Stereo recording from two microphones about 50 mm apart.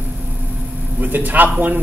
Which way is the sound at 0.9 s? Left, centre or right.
Right.